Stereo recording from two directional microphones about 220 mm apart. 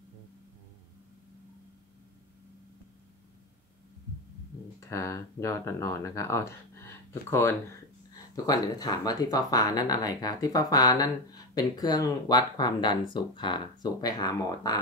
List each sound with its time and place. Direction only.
4.7 s speech: 15° left (ahead or behind)